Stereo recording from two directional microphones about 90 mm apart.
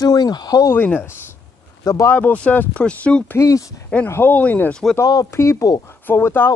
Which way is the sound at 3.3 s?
40° left (ahead or behind).